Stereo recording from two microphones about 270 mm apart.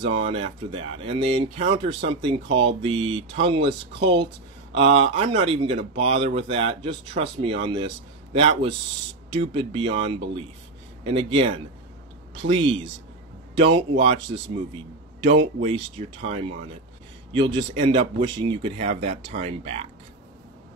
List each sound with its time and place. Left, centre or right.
0.0 s speech: right
16.3 s speech: right